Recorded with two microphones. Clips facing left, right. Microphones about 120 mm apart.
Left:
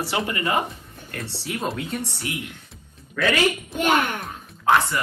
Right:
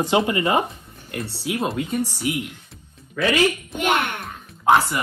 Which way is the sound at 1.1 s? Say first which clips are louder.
Right 4 dB; 5° right (ahead or behind).